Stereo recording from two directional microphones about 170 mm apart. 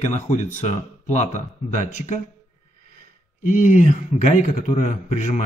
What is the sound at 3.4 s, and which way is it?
A man's voice, 50° left (ahead or behind).